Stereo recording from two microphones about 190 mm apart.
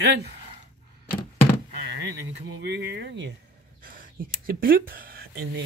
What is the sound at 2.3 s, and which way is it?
Speech, 60° right (ahead or behind).